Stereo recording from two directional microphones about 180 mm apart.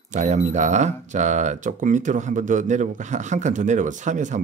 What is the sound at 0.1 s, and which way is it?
Speech, 40° right (ahead or behind).